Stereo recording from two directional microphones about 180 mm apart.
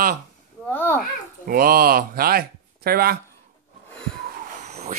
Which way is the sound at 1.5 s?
55° right (ahead or behind).